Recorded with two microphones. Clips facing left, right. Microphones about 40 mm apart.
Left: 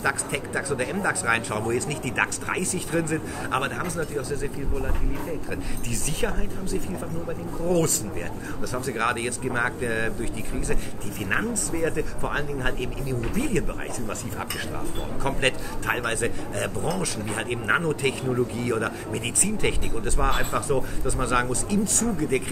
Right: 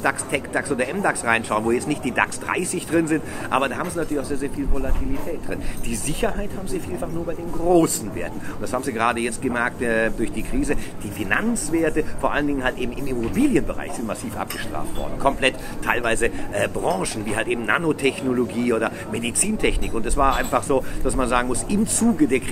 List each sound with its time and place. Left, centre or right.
0.0 s speech: centre
16.1 s speech: right
16.8 s speech: centre
20.6 s speech: right